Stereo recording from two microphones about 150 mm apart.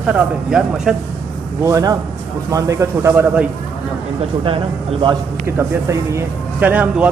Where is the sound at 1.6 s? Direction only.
20° right (ahead or behind).